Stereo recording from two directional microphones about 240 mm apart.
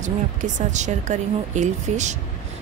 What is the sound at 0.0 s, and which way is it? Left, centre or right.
A woman's voice, right.